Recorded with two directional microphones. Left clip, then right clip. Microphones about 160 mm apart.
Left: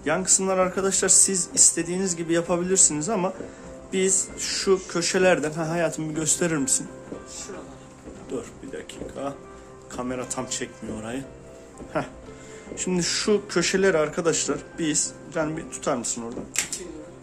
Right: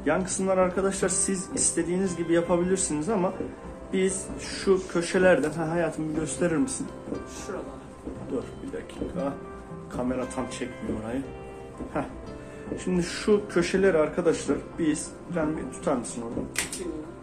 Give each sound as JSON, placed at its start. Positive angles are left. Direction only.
{"t": 0.0, "sound": "a man's voice", "side_deg": 60}
{"t": 9.9, "sound": "speech", "side_deg": 70}
{"t": 12.7, "sound": "a man's voice", "side_deg": 65}